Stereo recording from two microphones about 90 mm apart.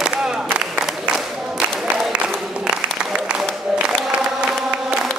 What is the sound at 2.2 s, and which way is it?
Applause, 10° right (ahead or behind).